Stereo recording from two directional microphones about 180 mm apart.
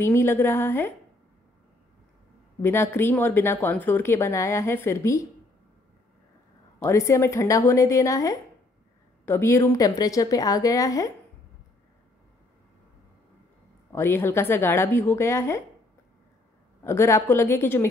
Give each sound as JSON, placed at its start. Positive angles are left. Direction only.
{"t": 0.0, "sound": "speech", "side_deg": 15}
{"t": 2.6, "sound": "speech", "side_deg": 15}
{"t": 6.8, "sound": "a woman's voice", "side_deg": 15}
{"t": 13.9, "sound": "speech", "side_deg": 15}
{"t": 16.8, "sound": "speech", "side_deg": 15}